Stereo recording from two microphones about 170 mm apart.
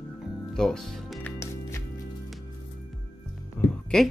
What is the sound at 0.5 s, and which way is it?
Speech, 5° left (ahead or behind).